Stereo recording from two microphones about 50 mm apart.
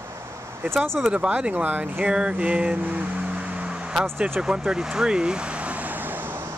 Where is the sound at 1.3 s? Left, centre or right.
Right.